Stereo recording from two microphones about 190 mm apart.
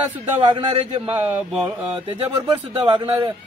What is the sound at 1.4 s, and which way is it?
Mantra, 5° right (ahead or behind).